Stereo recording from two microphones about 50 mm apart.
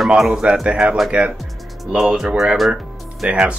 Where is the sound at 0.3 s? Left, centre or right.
Centre.